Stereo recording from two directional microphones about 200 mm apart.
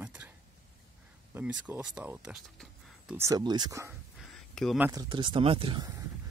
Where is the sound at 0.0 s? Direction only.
5° right (ahead or behind).